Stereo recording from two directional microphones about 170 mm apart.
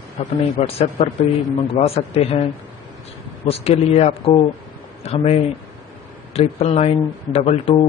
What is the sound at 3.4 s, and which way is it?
Speech, 35° left (ahead or behind).